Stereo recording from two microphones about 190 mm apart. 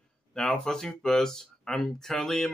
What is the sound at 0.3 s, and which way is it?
Speech, 5° left (ahead or behind).